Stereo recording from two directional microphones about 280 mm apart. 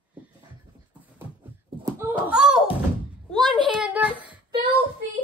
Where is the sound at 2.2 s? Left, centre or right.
Centre.